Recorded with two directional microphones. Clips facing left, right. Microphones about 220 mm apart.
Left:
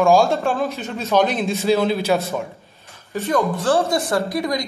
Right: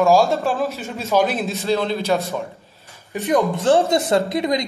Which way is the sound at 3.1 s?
15° right (ahead or behind).